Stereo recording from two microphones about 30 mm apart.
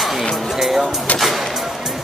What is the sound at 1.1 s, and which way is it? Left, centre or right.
Music, centre.